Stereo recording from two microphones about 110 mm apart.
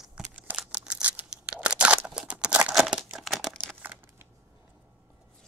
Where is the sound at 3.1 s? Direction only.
Centre (ahead or behind).